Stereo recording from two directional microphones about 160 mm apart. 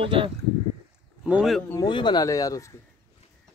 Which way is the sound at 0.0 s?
30° right (ahead or behind).